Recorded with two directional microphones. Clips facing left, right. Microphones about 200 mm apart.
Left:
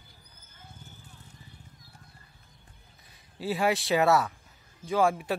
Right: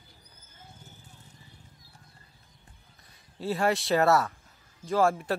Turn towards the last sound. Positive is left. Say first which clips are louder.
# even
turn(degrees=0)  # may be behind; listen again after turning